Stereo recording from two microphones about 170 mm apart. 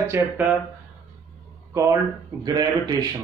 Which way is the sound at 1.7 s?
15° right (ahead or behind).